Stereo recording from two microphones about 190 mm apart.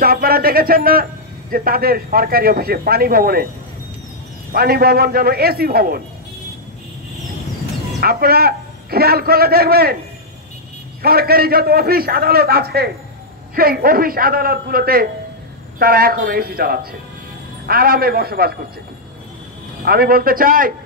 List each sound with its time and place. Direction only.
0.0 s a man's voice: 50° right (ahead or behind)
4.5 s a man's voice: 50° right (ahead or behind)
8.0 s a man's voice: 55° right (ahead or behind)
11.0 s a man's voice: 55° right (ahead or behind)
19.8 s a man's voice: 50° right (ahead or behind)